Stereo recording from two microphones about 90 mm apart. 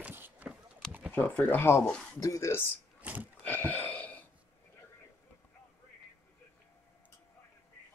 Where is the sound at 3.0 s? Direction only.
15° right (ahead or behind).